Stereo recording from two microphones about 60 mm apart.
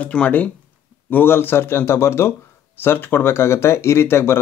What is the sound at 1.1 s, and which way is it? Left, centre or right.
Speech, left.